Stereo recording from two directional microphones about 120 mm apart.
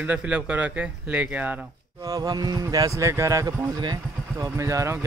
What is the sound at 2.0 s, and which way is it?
Speech, 30° right (ahead or behind).